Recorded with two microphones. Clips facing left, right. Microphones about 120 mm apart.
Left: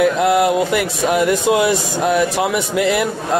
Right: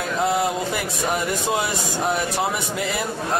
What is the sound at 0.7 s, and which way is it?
Speech, 90° left.